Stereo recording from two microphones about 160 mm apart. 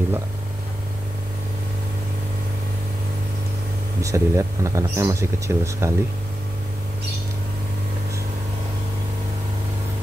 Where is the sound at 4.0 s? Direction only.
20° right (ahead or behind).